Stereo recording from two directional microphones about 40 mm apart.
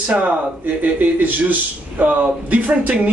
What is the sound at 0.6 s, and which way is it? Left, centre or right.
Speech, right.